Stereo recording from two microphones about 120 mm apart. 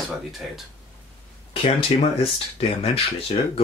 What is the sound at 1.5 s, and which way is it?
Speech, 55° left (ahead or behind).